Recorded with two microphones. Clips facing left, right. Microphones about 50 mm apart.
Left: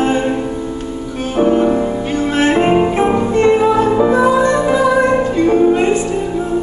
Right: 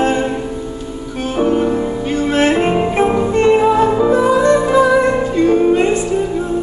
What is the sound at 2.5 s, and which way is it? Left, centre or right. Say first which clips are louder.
Music: left 2 dB; centre.